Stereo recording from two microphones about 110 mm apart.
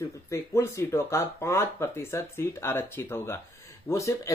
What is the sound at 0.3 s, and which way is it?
Speech, 25° left (ahead or behind).